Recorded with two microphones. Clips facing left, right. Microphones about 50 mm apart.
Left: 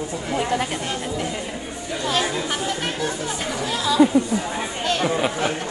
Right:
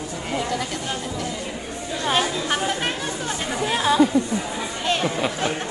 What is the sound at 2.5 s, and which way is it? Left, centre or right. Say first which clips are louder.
Speech: right 2 dB; right.